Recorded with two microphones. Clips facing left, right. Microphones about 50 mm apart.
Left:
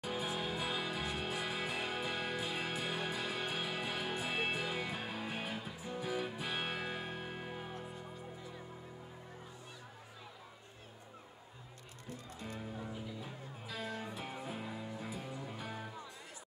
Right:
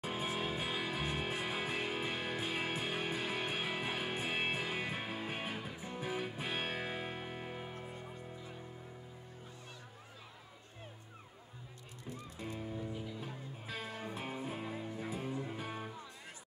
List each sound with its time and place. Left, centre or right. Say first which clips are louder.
0.0 s music: right 1 dB; right
7.7 s music: even; right
13.2 s music: right 1 dB; right